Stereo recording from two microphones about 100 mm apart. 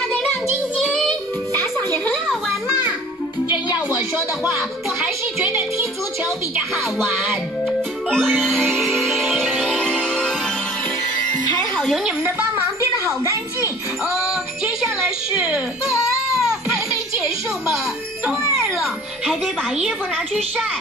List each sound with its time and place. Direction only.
0.0 s child singing: 5° left (ahead or behind)
1.5 s children playing: 20° left (ahead or behind)
3.4 s music: 45° left (ahead or behind)
4.4 s a child's voice: 5° right (ahead or behind)
5.0 s speech: 15° right (ahead or behind)
6.7 s a child's voice: centre (ahead or behind)
7.2 s music: centre (ahead or behind)
11.9 s a child's voice: 5° right (ahead or behind)
12.2 s a woman's voice: 30° right (ahead or behind)
14.0 s a sound: 5° right (ahead or behind)
18.3 s music: 30° right (ahead or behind)
18.8 s a child's voice: centre (ahead or behind)